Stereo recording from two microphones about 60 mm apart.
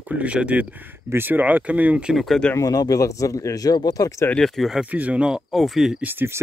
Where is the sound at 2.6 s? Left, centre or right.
Left.